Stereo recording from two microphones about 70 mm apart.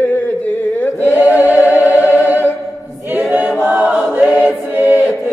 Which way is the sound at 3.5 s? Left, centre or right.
Right.